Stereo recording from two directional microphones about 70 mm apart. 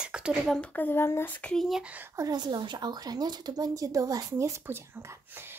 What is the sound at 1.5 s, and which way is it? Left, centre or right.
Speech, centre.